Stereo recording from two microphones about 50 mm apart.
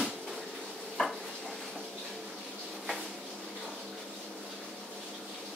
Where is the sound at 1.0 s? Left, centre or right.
Centre.